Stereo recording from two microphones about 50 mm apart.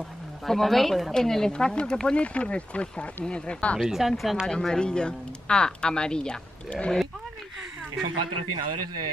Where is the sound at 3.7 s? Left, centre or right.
Centre.